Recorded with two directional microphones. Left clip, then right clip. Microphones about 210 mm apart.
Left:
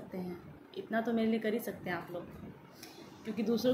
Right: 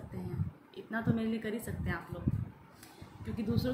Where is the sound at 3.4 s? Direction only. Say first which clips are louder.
Left 4 dB; 20° right (ahead or behind).